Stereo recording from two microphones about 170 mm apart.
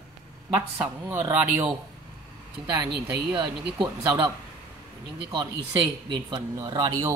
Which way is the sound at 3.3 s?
25° right (ahead or behind).